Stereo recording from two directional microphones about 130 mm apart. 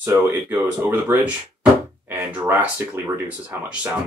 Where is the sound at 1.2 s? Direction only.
10° right (ahead or behind).